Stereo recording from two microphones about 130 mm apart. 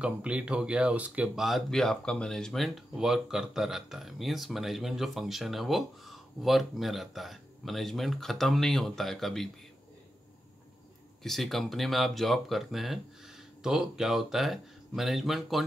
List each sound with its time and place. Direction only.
0.0 s speech: 10° right (ahead or behind)
11.2 s speech: centre (ahead or behind)